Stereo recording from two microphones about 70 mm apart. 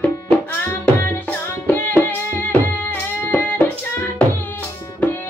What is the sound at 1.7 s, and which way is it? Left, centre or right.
Music, left.